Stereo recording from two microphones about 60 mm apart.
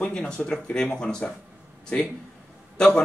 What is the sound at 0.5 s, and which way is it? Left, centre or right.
Speech, centre.